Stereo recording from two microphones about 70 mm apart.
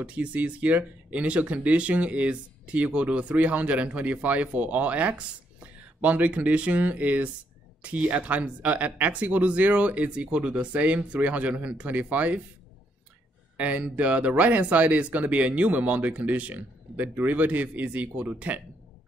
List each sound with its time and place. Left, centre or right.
0.0 s speech: centre
13.6 s speech: centre